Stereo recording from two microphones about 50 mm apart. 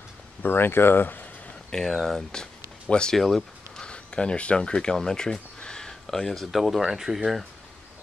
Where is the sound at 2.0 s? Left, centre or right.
Centre.